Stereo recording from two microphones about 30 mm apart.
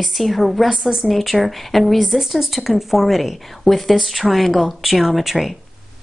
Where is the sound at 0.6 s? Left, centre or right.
Centre.